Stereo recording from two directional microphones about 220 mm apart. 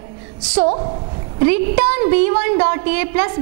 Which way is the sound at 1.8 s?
10° right (ahead or behind).